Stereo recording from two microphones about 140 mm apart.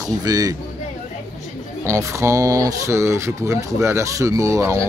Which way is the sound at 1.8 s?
20° right (ahead or behind).